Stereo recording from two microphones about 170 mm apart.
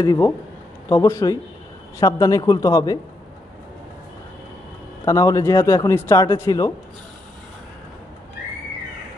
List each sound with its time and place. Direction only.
0.0 s speech: 20° left (ahead or behind)
5.0 s speech: 20° left (ahead or behind)